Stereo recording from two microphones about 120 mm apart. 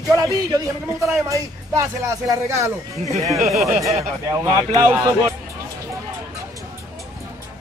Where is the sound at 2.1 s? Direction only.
25° right (ahead or behind).